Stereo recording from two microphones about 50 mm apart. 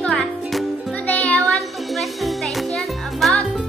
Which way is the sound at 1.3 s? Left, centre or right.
Centre.